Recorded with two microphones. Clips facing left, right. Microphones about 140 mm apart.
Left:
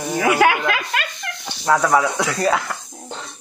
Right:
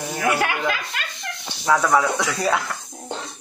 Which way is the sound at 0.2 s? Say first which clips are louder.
Left 5 dB; 90° left.